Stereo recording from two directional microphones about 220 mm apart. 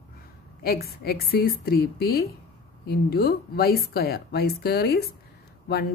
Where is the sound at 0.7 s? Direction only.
45° left (ahead or behind).